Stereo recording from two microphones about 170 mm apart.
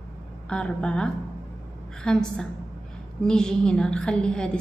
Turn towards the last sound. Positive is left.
turn(degrees=5)  # may be behind; listen again after turning